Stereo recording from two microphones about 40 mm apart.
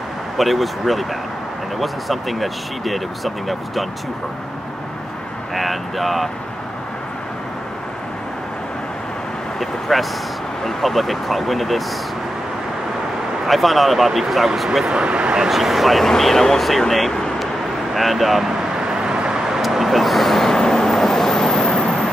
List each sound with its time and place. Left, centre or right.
0.4 s speech: centre
5.5 s speech: centre
9.6 s vehicle: centre
10.6 s speech: centre
13.5 s speech: centre
14.9 s speech: right
15.4 s speech: centre
18.5 s vehicle: centre
19.6 s vehicle: centre